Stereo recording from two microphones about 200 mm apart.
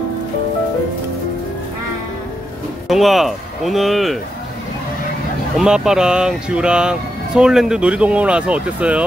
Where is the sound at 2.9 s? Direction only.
Centre (ahead or behind).